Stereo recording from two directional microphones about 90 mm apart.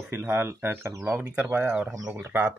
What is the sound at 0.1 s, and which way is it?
Speech, 30° right (ahead or behind).